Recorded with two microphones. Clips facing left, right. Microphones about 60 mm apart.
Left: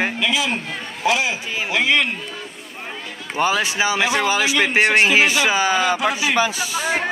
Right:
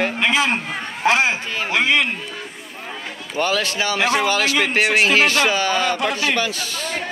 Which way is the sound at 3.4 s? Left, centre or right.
Centre.